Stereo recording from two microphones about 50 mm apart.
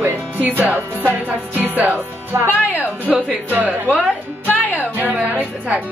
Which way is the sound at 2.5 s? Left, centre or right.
Left.